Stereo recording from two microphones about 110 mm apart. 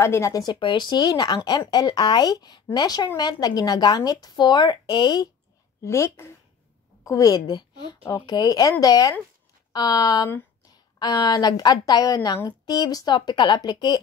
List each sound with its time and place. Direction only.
0.0 s a woman's voice: 25° left (ahead or behind)
5.9 s a woman's voice: 25° left (ahead or behind); by 14.0 s 40° left (ahead or behind)